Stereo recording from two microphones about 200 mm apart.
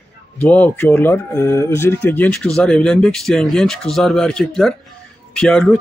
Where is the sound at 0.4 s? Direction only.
10° left (ahead or behind).